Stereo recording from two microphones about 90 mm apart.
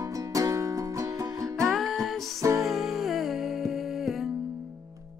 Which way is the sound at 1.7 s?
Centre (ahead or behind).